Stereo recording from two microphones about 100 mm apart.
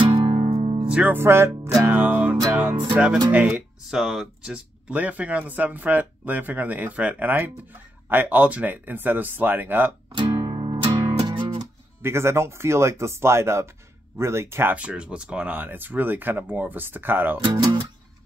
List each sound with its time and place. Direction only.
0.1 s music: 55° right (ahead or behind)
0.5 s music: 85° right
0.8 s music: 10° right (ahead or behind)
1.1 s speech: 25° right (ahead or behind)
1.9 s music: 20° right (ahead or behind)
2.9 s speech: 10° right (ahead or behind)
10.1 s music: 60° right (ahead or behind)
12.0 s speech: 25° right (ahead or behind)